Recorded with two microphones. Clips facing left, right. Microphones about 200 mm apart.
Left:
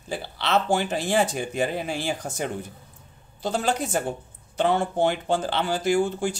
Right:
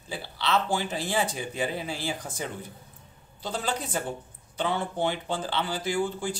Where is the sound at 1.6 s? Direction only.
55° left (ahead or behind).